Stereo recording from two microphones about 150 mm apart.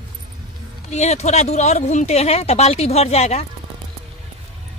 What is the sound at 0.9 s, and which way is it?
Speech, 45° left (ahead or behind).